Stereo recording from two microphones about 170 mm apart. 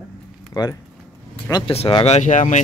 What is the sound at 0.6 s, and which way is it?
Speech, 20° left (ahead or behind).